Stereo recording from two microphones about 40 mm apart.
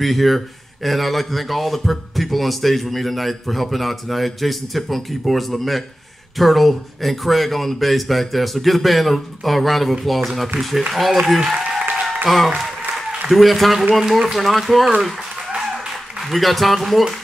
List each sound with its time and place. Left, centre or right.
0.0 s a man's voice: centre
16.2 s a man's voice: centre